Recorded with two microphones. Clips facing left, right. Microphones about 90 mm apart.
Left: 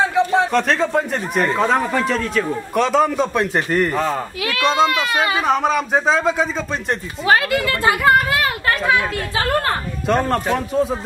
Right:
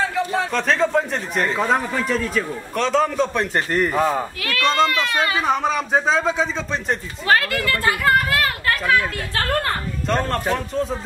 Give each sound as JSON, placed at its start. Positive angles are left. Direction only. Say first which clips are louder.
{"t": 0.0, "sound": "a sound", "louder": "left 5 dB", "side_deg": 20}
{"t": 0.5, "sound": "speech", "louder": "left 2 dB", "side_deg": 0}
{"t": 4.4, "sound": "speech", "louder": "left 3 dB", "side_deg": 15}
{"t": 5.5, "sound": "speech", "louder": "left 3 dB", "side_deg": 5}
{"t": 7.2, "sound": "speech", "louder": "left 2 dB", "side_deg": 15}